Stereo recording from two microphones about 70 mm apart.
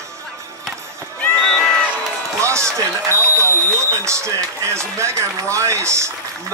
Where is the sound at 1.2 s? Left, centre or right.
Centre.